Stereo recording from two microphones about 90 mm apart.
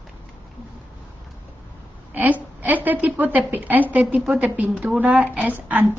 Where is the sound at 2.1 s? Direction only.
20° right (ahead or behind).